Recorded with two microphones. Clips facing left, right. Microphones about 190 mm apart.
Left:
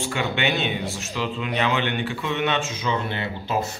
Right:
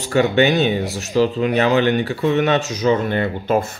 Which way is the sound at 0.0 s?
40° right (ahead or behind).